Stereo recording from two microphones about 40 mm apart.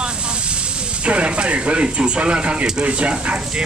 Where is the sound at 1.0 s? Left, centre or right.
Right.